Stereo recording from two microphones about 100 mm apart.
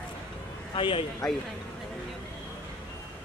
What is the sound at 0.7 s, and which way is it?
Speech, 55° left (ahead or behind).